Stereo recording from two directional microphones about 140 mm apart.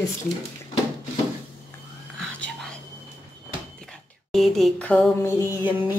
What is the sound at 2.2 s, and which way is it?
Whispering, 5° left (ahead or behind).